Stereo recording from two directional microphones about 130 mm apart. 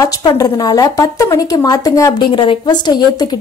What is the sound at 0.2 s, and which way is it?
Speech, 30° left (ahead or behind).